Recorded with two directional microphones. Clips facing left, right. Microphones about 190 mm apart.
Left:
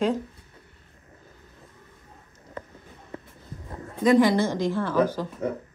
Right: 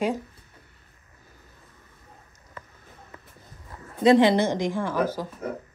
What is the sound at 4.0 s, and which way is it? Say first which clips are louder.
Speech: right 1 dB; 25° right (ahead or behind).